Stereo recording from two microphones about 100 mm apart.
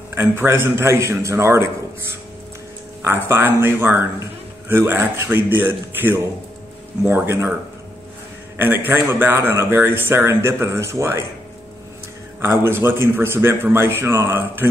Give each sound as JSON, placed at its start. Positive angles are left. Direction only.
{"t": 0.1, "sound": "speech", "side_deg": -25}
{"t": 3.0, "sound": "speech", "side_deg": -25}
{"t": 8.8, "sound": "speech", "side_deg": -20}
{"t": 12.4, "sound": "speech", "side_deg": -25}